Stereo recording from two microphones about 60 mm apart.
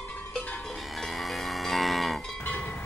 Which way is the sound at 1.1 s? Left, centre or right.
Centre.